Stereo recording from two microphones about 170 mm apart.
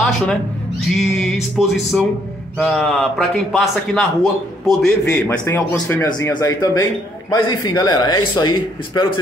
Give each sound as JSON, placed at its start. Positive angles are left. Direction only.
{"t": 0.0, "sound": "a man's voice", "side_deg": 5}